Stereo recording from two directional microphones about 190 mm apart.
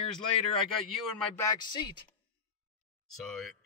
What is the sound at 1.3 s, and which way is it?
Speech, 20° left (ahead or behind).